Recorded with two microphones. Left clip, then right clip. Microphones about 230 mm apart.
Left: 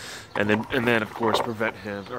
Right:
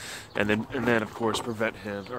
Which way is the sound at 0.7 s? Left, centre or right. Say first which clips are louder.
Left 3 dB; left.